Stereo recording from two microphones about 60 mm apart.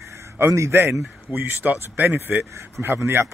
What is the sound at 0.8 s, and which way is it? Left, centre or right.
Speech, right.